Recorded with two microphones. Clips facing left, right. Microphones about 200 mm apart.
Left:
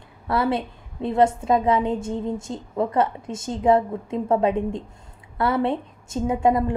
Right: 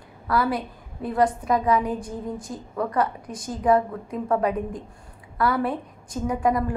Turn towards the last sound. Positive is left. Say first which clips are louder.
# left 3 dB
turn(degrees=25)  # may be behind; listen again after turning